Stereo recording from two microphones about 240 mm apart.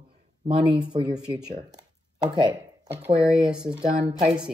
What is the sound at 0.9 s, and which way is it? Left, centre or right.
Speech, right.